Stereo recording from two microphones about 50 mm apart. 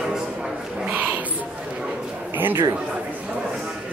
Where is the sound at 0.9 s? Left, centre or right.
Right.